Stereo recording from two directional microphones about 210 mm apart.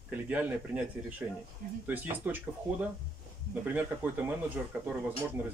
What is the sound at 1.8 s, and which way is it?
Speech, 10° right (ahead or behind).